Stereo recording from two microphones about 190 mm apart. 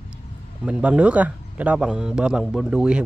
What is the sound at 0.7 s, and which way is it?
Speech, 5° right (ahead or behind).